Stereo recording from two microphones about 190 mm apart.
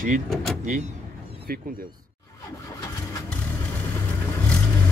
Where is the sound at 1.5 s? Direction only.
50° right (ahead or behind).